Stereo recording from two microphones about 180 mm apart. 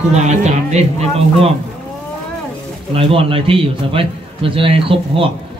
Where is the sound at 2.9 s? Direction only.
30° right (ahead or behind).